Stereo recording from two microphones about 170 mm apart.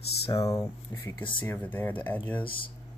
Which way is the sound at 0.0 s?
75° left (ahead or behind).